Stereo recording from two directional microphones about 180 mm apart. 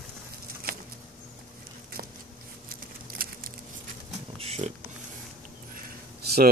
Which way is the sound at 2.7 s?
55° right (ahead or behind).